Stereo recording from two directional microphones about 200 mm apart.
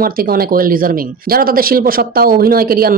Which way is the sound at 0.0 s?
45° right (ahead or behind).